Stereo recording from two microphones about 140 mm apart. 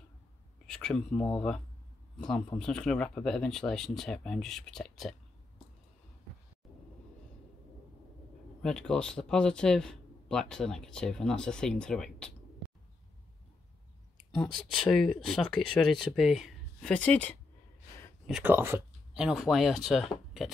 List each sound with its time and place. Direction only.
0.7 s speech: 5° left (ahead or behind)
8.6 s speech: 5° left (ahead or behind)
14.4 s speech: 5° left (ahead or behind)
18.4 s speech: 15° right (ahead or behind)
19.1 s speech: 5° right (ahead or behind)